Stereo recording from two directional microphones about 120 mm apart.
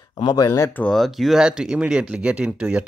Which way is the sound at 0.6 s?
15° left (ahead or behind).